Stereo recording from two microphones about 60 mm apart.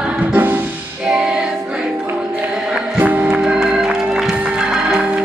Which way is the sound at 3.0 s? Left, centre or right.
Right.